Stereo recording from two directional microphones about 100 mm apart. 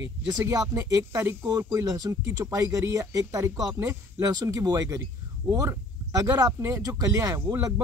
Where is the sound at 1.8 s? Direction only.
35° right (ahead or behind).